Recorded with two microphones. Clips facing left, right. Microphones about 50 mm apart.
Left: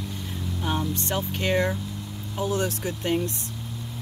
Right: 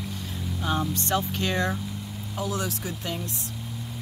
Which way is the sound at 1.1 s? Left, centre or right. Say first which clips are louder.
Left 2 dB; centre.